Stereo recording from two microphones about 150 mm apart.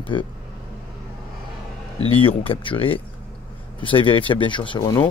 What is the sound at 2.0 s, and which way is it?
Speech, 40° left (ahead or behind).